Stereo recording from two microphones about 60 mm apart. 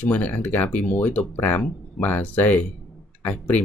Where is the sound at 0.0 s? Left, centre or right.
Left.